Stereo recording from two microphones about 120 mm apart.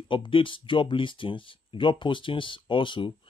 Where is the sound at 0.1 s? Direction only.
45° left (ahead or behind).